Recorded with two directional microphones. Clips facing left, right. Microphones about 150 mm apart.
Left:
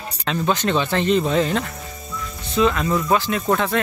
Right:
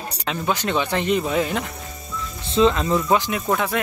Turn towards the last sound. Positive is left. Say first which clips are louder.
# left 2 dB
turn(degrees=-10)  # may be behind; listen again after turning